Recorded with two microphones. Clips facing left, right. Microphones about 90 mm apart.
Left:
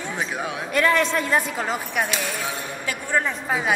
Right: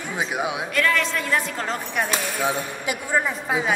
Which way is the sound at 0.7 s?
25° left (ahead or behind).